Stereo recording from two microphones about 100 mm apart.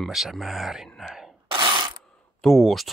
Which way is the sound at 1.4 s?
50° right (ahead or behind).